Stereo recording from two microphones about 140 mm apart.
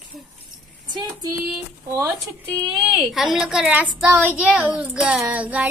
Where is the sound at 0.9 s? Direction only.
30° right (ahead or behind).